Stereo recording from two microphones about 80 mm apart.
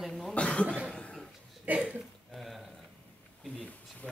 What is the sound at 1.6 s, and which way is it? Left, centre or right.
Speech, centre.